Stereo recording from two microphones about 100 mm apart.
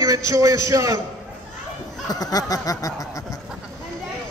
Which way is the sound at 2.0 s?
40° left (ahead or behind).